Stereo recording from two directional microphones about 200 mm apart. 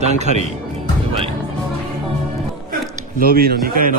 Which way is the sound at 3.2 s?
50° right (ahead or behind).